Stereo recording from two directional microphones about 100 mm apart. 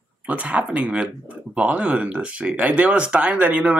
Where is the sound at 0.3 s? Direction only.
15° right (ahead or behind).